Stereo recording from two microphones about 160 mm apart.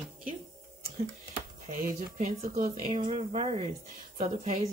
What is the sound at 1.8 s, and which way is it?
Speech, 55° right (ahead or behind).